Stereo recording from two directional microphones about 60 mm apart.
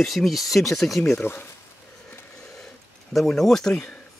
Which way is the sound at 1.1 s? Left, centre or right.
Left.